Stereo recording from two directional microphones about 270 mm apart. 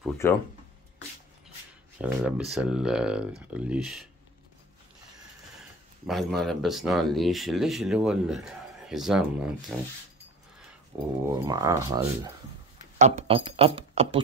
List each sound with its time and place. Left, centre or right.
0.2 s speech: centre
2.0 s speech: centre
6.0 s speech: centre
11.2 s speech: centre
13.0 s speech: right